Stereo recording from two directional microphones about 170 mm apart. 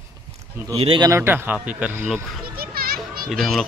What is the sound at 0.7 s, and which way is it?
Speech, 35° right (ahead or behind).